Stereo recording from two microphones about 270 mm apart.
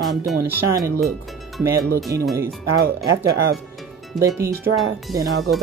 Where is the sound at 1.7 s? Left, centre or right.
Right.